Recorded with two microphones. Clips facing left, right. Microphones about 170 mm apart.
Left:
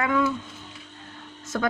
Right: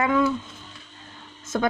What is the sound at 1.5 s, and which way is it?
Speech, 20° right (ahead or behind).